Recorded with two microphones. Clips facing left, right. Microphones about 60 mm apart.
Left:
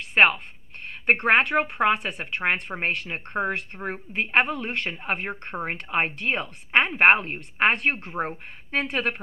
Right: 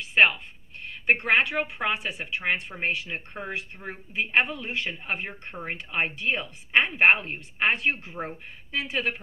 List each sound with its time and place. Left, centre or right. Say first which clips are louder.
0.0 s a sound: left 2 dB; left
0.8 s speech: left 3 dB; left
5.6 s speech: left 3 dB; left